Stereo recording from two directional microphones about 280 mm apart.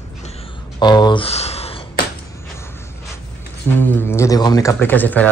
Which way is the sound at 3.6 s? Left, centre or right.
Centre.